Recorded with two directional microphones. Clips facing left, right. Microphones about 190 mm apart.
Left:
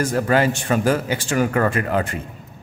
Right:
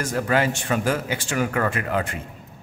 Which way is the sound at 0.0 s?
35° left (ahead or behind).